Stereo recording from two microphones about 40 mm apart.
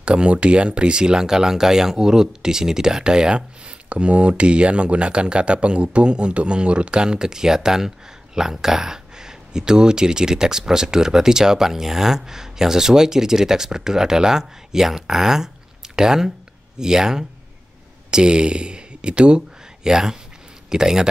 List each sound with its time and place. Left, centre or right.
0.0 s speech: right